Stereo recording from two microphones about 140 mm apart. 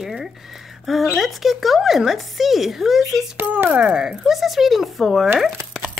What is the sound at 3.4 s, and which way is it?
Speech, 10° right (ahead or behind).